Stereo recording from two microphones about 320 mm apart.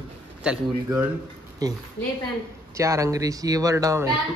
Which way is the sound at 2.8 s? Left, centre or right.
Centre.